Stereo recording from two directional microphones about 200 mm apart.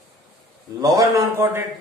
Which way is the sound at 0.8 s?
15° right (ahead or behind).